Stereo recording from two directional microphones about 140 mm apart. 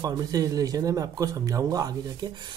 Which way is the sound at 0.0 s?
25° right (ahead or behind).